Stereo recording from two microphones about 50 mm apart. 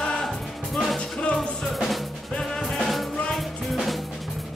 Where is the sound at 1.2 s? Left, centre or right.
Left.